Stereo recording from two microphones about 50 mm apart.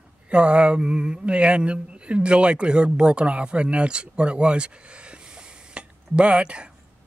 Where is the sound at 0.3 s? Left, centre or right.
Right.